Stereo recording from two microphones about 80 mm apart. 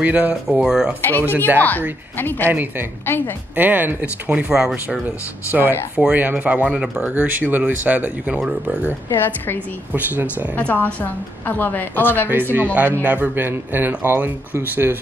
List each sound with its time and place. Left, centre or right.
0.0 s speech: centre
1.0 s a woman's voice: left
2.5 s speech: right
3.1 s a woman's voice: left
3.5 s speech: right
4.3 s speech: centre
5.5 s speech: right
10.5 s a woman's voice: centre
12.3 s speech: right